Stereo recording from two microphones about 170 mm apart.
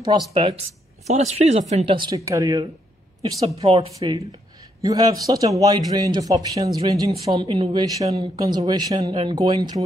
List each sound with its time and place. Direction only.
0.3 s speech: 35° right (ahead or behind)
2.0 s a man's voice: 20° right (ahead or behind)
7.3 s a man's voice: 30° right (ahead or behind)
7.8 s a man's voice: 20° right (ahead or behind)